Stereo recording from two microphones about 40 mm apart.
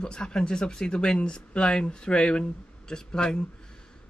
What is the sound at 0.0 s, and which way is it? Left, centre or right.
Speech, left.